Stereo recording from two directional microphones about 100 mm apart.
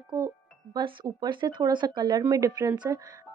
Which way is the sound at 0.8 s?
50° right (ahead or behind).